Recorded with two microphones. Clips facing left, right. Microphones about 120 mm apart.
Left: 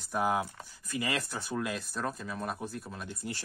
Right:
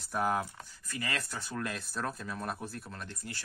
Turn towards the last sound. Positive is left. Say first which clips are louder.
# left 3 dB
turn(degrees=5)  # may be behind; listen again after turning